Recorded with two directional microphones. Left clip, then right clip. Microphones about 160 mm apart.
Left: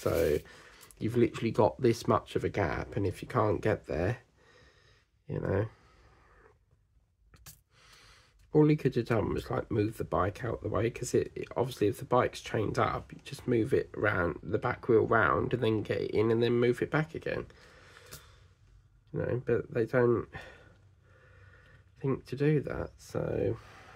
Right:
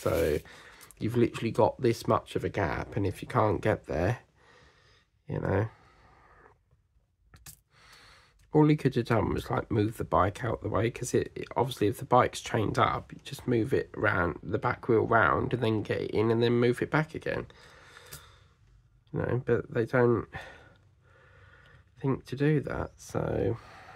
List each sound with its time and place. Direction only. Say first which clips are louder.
0.0 s speech: right 1 dB; 15° right (ahead or behind)
7.8 s speech: right 3 dB; 25° right (ahead or behind)
22.0 s speech: right 1 dB; 20° right (ahead or behind)